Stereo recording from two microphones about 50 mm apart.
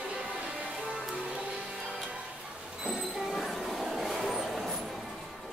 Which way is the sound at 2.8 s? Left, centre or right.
Centre.